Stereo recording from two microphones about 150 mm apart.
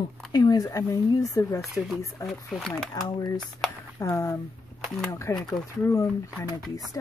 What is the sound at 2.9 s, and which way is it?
Speech, 25° left (ahead or behind).